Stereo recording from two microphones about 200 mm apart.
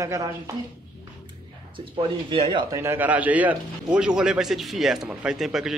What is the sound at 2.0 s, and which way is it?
Speech, 25° right (ahead or behind).